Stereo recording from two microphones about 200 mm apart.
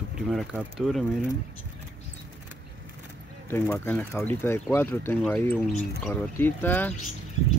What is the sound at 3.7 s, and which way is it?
Speech, 10° left (ahead or behind).